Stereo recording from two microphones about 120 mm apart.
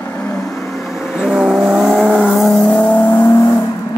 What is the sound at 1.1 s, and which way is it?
Vehicle, 5° right (ahead or behind).